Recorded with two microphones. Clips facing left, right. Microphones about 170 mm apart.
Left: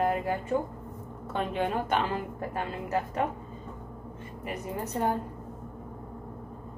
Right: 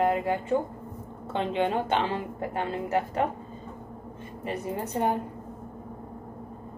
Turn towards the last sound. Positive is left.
turn(degrees=-25)  # may be behind; listen again after turning